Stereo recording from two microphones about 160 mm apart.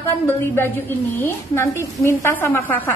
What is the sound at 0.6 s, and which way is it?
A woman's voice, 15° left (ahead or behind).